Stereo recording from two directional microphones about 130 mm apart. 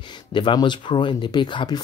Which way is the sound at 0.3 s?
35° left (ahead or behind).